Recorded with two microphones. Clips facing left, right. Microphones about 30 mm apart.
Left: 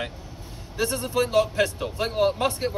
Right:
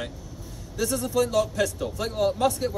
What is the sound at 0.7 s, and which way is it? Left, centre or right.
Speech, left.